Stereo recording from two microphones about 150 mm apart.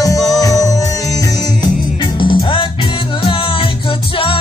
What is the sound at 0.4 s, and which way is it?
Music, 20° left (ahead or behind).